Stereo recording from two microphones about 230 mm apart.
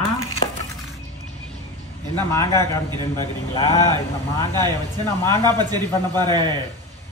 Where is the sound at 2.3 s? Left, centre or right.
Centre.